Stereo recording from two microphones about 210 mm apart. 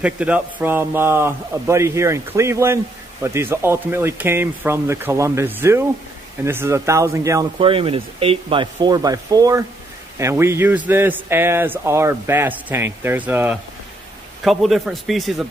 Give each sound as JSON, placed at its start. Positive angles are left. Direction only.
{"t": 0.0, "sound": "a man's voice", "side_deg": -5}
{"t": 7.5, "sound": "a man's voice", "side_deg": -25}